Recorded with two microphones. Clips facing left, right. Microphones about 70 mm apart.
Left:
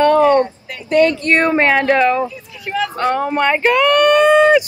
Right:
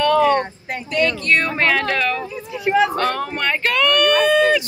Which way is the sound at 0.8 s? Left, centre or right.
Left.